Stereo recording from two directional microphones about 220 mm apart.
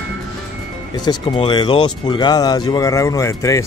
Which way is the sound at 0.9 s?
20° left (ahead or behind).